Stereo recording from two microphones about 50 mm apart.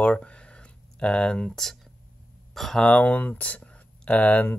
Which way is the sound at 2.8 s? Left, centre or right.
Left.